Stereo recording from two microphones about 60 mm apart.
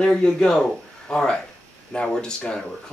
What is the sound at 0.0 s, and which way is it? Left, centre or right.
Speech, centre.